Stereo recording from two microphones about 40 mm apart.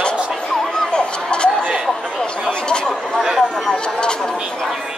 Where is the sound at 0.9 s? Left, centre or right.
Left.